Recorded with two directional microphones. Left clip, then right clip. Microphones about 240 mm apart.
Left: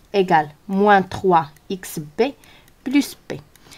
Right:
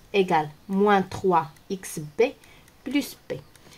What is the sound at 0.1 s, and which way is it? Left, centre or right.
A woman's voice, left.